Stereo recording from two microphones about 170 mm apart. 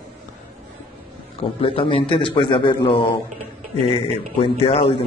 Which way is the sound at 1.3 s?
35° left (ahead or behind).